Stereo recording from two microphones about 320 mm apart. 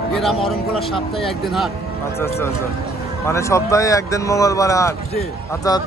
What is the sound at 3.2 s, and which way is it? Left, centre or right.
Speech, centre.